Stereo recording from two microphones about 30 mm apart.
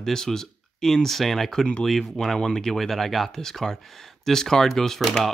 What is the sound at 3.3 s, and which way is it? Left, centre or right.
Speech, centre.